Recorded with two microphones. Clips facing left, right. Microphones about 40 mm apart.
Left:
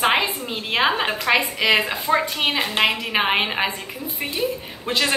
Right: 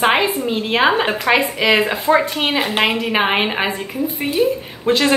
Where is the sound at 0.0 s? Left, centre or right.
Centre.